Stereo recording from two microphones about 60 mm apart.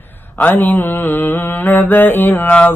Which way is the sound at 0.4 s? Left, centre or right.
Left.